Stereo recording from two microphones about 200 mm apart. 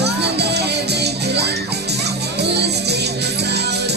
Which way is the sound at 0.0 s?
55° right (ahead or behind).